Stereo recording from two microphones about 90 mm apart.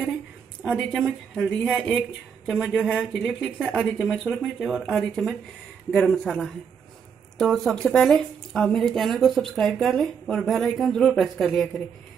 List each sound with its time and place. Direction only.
0.7 s speech: centre (ahead or behind)
2.6 s speech: 5° right (ahead or behind)